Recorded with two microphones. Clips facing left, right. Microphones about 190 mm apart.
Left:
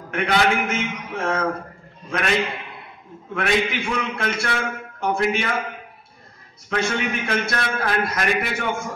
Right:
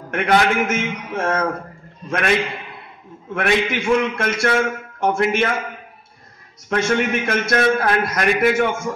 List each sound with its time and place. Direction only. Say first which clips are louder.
0.1 s a man's voice: right 3 dB; 45° right (ahead or behind)
3.3 s a man's voice: right 2 dB; 50° right (ahead or behind)
6.7 s a man's voice: right 5 dB; 45° right (ahead or behind)